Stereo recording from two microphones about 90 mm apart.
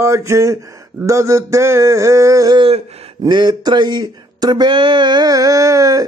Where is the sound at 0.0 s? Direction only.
35° right (ahead or behind).